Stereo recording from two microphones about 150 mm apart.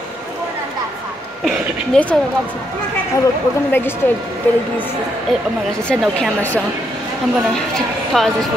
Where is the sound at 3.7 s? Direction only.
15° left (ahead or behind).